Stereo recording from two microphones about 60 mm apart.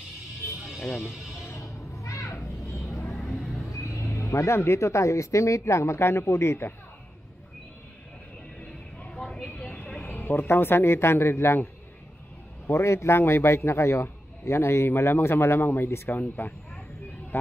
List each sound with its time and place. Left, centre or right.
1.5 s a sound: left
3.1 s vehicle: centre
3.7 s speech: left
8.5 s a sound: centre
9.5 s vehicle: left
10.0 s speech: left
12.7 s a man's voice: left